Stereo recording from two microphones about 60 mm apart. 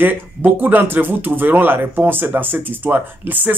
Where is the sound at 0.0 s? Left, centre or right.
Right.